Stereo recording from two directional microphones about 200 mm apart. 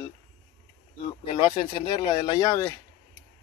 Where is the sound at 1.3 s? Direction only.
25° left (ahead or behind).